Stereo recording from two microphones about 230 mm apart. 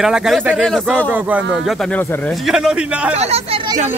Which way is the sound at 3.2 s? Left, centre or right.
Right.